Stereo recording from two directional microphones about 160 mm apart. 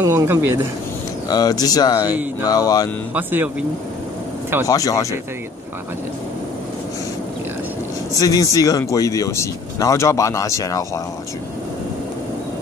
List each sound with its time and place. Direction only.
0.0 s speech: 15° right (ahead or behind)
1.3 s speech: 25° left (ahead or behind)
3.2 s speech: 10° right (ahead or behind)
4.6 s speech: 20° left (ahead or behind)
8.2 s speech: 20° left (ahead or behind)